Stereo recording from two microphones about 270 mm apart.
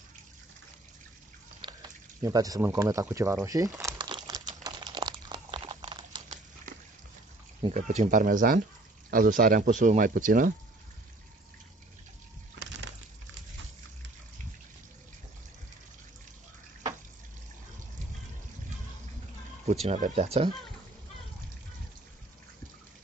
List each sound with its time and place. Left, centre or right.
1.6 s speech: centre
3.4 s crumpling: centre
7.6 s speech: right
19.7 s speech: right